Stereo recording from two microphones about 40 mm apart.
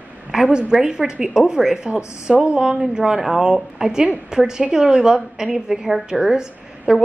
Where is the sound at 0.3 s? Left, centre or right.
Centre.